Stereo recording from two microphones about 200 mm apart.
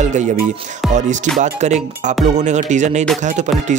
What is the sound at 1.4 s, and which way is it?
Speech, 35° right (ahead or behind).